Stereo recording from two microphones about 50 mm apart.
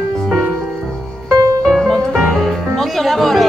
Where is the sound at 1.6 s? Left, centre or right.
Centre.